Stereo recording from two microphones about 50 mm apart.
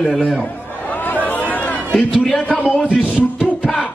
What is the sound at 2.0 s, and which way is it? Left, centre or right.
Speech, centre.